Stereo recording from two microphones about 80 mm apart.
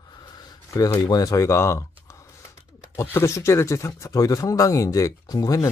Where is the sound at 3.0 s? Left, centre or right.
Left.